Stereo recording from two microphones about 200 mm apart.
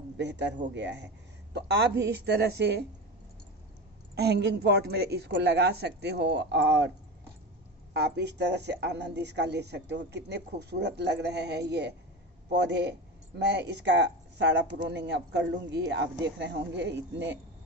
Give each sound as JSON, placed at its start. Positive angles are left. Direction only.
{"t": 0.2, "sound": "speech", "side_deg": -60}
{"t": 4.1, "sound": "speech", "side_deg": -55}
{"t": 7.9, "sound": "speech", "side_deg": -55}